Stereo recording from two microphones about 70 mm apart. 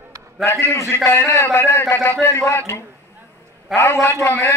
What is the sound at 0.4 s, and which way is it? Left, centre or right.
A man's voice, left.